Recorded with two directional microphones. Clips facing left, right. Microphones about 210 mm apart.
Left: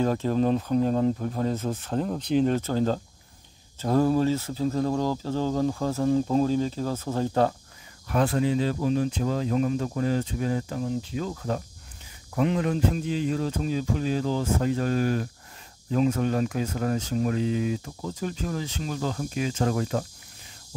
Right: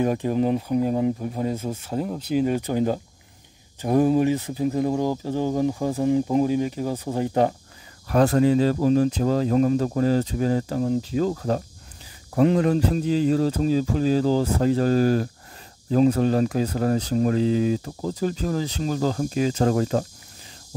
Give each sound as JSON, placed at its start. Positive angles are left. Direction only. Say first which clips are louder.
{"t": 0.0, "sound": "speech", "louder": "right 2 dB", "side_deg": -15}
{"t": 8.1, "sound": "speech", "louder": "right 6 dB", "side_deg": -40}